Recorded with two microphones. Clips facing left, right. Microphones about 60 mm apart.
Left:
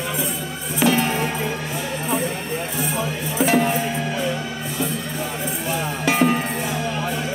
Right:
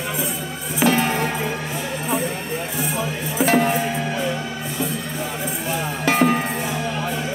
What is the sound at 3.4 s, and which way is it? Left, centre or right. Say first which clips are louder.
Music: right 1 dB; right.